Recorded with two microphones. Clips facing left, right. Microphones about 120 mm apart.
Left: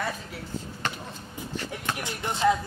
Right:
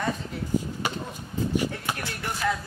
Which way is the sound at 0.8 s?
10° right (ahead or behind).